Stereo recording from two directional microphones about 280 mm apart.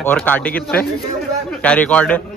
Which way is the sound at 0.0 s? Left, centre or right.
Centre.